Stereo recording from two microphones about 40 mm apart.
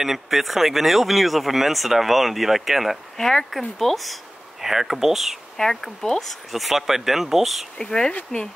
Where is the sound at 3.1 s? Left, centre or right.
Centre.